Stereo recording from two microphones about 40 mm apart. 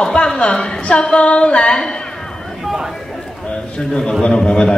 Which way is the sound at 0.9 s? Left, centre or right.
Left.